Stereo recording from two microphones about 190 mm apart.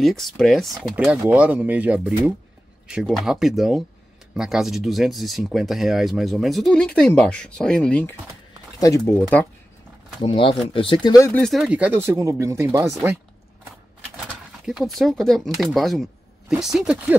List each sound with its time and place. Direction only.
0.0 s speech: centre (ahead or behind); by 9.1 s 20° left (ahead or behind)
9.1 s speech: 5° left (ahead or behind)
10.2 s speech: 25° left (ahead or behind)
11.4 s speech: centre (ahead or behind)
14.7 s speech: centre (ahead or behind)